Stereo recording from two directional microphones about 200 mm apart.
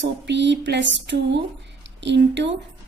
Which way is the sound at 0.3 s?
60° right (ahead or behind).